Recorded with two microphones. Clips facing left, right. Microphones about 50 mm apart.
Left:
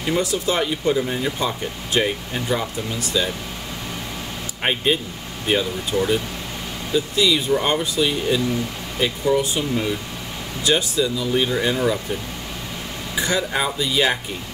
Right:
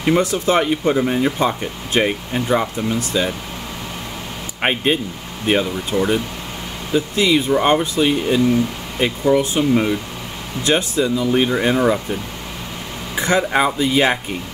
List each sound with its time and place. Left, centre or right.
0.0 s speech: right
4.6 s speech: right
13.1 s speech: right